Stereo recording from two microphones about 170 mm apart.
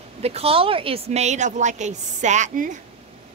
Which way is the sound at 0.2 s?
35° right (ahead or behind).